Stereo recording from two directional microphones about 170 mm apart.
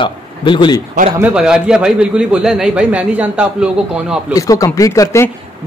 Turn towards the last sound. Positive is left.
turn(degrees=20)  # may be behind; listen again after turning